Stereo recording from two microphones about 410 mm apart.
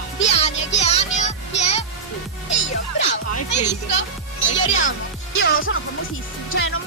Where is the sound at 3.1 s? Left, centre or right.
Left.